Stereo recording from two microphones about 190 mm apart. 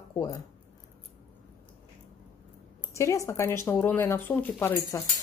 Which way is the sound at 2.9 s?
15° left (ahead or behind).